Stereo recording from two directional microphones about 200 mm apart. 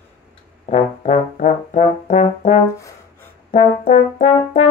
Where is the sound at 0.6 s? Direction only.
35° left (ahead or behind).